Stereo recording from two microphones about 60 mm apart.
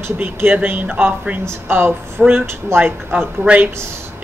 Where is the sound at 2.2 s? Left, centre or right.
Centre.